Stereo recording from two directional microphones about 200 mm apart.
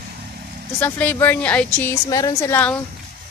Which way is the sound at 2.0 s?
15° left (ahead or behind).